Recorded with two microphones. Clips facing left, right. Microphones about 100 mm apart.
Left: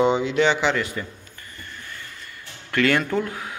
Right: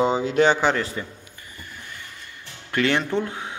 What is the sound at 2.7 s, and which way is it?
Speech, 20° right (ahead or behind).